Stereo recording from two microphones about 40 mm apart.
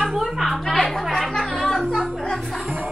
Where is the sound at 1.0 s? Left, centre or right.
Centre.